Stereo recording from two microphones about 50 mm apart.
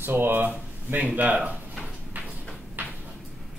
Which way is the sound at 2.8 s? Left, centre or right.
Right.